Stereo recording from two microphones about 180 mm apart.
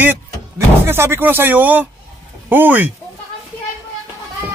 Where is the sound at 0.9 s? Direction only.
15° right (ahead or behind).